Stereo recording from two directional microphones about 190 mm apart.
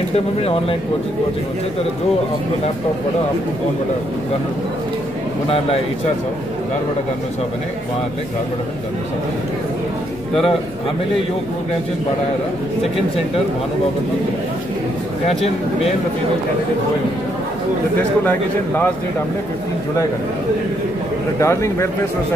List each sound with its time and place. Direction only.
0.1 s speech: 30° left (ahead or behind)
21.4 s a man's voice: 15° left (ahead or behind)